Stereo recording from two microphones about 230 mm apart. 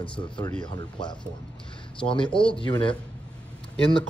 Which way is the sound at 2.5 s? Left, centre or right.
Left.